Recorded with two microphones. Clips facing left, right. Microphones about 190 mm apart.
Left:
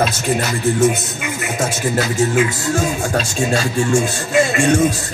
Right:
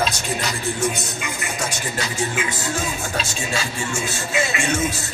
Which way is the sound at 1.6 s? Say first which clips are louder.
Left 10 dB; 45° left (ahead or behind).